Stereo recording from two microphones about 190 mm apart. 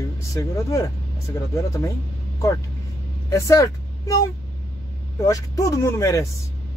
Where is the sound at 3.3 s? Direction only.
15° left (ahead or behind).